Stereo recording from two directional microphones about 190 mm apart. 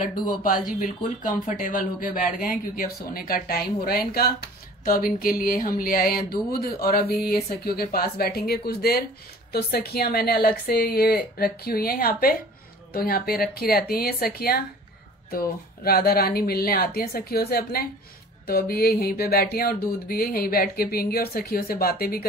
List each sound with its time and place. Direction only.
0.3 s speech: 50° left (ahead or behind)